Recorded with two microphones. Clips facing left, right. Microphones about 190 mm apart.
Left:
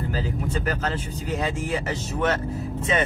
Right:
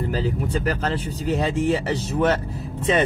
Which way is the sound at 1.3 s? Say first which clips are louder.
Right 5 dB; 35° right (ahead or behind).